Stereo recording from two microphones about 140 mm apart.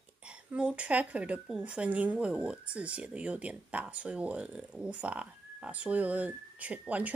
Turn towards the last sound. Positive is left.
turn(degrees=-10)  # may be behind; listen again after turning